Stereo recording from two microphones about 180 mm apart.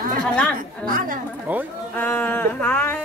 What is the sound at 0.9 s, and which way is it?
Speech, 50° right (ahead or behind).